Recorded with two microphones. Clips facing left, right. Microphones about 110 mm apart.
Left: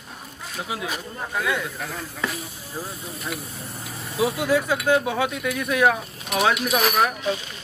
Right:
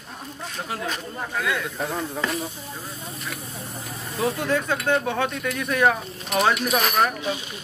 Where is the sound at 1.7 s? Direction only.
30° right (ahead or behind).